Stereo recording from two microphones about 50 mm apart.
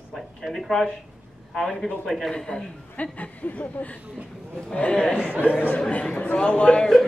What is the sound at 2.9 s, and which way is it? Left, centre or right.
Speech, left.